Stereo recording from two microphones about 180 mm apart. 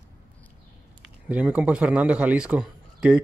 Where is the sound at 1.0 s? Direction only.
5° right (ahead or behind).